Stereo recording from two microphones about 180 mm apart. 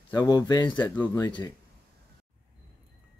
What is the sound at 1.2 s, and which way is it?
Speech, 25° left (ahead or behind).